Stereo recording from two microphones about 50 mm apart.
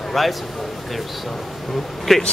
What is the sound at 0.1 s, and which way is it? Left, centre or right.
Speech, centre.